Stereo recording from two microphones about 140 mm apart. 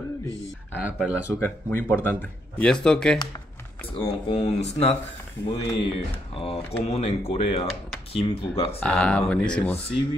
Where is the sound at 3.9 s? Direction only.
40° left (ahead or behind).